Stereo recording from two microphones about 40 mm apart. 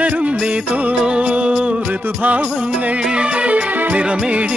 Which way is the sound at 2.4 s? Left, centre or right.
Right.